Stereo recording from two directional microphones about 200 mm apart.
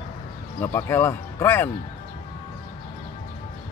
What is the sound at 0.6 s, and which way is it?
Speech, 10° left (ahead or behind).